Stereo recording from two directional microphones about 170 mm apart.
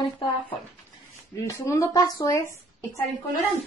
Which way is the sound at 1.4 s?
15° left (ahead or behind).